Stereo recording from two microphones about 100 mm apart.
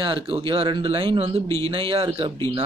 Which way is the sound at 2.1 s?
55° right (ahead or behind).